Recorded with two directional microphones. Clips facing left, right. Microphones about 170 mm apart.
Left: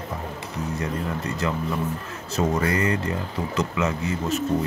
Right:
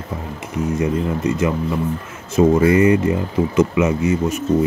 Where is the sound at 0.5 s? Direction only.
20° right (ahead or behind).